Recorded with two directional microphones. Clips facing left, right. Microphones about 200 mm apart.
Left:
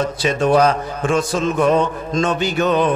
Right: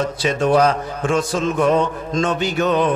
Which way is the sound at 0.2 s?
20° left (ahead or behind).